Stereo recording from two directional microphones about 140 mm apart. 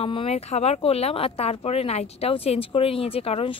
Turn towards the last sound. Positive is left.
turn(degrees=45)  # may be behind; listen again after turning